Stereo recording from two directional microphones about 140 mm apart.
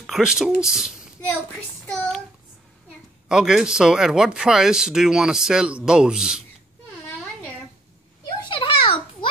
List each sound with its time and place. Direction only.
0.0 s speech: 5° right (ahead or behind)
1.9 s child singing: 5° left (ahead or behind)
3.3 s speech: 5° right (ahead or behind)
8.5 s a sound: 40° left (ahead or behind)